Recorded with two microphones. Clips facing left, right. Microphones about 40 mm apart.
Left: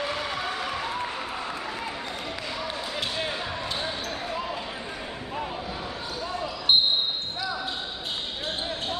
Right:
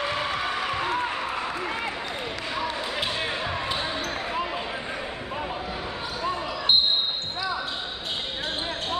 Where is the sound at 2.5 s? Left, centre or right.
Centre.